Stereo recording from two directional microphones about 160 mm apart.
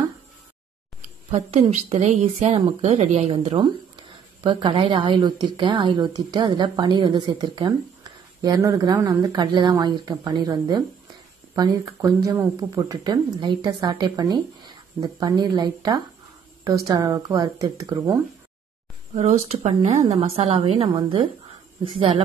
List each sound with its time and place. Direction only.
1.0 s speech: 40° right (ahead or behind); by 18.2 s 20° right (ahead or behind)
19.1 s a woman's voice: 45° right (ahead or behind)